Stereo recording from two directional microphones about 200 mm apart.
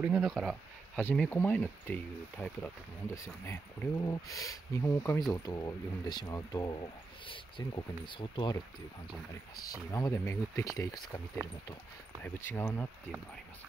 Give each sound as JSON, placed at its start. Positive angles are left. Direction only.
{"t": 0.0, "sound": "speech", "side_deg": -5}
{"t": 9.8, "sound": "speech", "side_deg": 15}
{"t": 12.2, "sound": "speech", "side_deg": 10}